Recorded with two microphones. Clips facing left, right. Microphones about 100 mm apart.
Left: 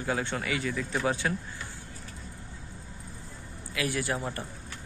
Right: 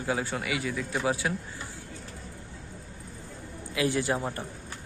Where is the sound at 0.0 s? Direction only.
10° right (ahead or behind).